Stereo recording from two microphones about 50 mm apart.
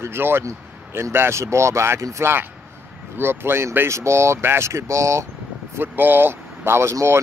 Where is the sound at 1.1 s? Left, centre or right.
Right.